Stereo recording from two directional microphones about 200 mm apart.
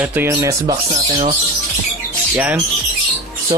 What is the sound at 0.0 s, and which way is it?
Speech, 10° right (ahead or behind).